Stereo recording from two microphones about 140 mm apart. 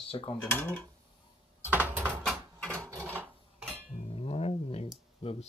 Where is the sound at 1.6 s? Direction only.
15° right (ahead or behind).